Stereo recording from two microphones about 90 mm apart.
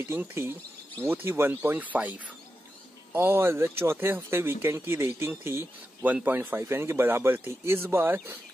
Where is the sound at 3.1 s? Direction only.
25° right (ahead or behind).